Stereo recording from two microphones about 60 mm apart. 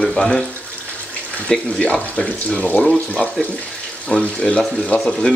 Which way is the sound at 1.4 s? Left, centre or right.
Centre.